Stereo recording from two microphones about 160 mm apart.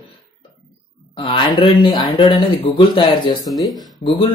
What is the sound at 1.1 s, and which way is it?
Speech, 35° left (ahead or behind).